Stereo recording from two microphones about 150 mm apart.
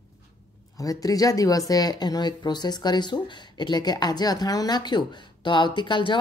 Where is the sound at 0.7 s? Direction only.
25° left (ahead or behind).